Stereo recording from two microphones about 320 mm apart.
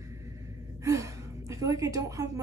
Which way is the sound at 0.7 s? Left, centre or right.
Centre.